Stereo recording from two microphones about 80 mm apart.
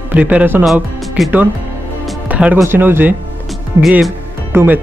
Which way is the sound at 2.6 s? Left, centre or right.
Right.